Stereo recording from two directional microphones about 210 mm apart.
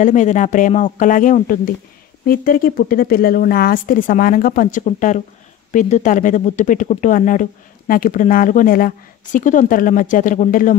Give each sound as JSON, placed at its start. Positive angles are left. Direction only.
{"t": 0.0, "sound": "speech", "side_deg": 35}